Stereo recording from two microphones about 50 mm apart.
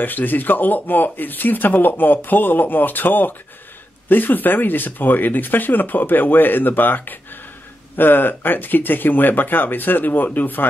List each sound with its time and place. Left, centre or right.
0.0 s speech: left